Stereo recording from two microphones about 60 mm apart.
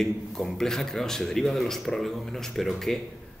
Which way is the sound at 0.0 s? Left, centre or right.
Centre.